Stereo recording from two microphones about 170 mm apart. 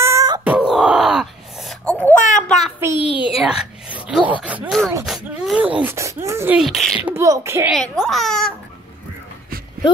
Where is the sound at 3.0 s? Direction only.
30° left (ahead or behind).